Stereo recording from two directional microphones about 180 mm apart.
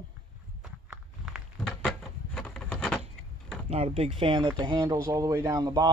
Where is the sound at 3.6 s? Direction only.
35° right (ahead or behind).